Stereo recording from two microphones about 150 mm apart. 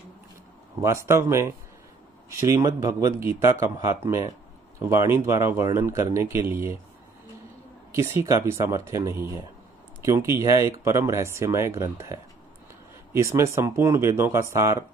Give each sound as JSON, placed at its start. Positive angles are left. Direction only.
{"t": 1.0, "sound": "speech", "side_deg": -20}
{"t": 7.9, "sound": "speech", "side_deg": -20}